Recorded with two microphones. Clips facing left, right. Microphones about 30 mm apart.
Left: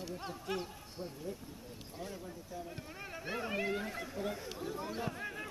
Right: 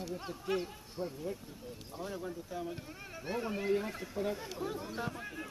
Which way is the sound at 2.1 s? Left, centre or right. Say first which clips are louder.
Right 5 dB; right.